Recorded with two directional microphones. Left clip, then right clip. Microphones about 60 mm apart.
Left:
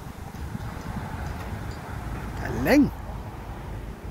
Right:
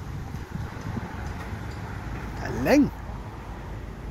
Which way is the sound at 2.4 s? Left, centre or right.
Centre.